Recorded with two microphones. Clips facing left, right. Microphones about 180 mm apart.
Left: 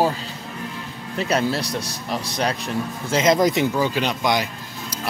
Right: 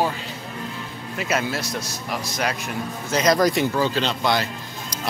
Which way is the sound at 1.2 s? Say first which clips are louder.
Left 3 dB; 35° left (ahead or behind).